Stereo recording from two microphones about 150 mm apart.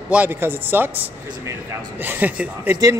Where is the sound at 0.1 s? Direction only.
10° right (ahead or behind).